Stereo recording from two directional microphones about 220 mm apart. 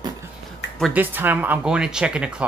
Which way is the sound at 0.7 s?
5° right (ahead or behind).